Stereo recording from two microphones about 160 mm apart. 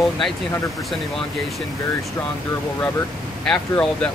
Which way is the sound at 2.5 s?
15° left (ahead or behind).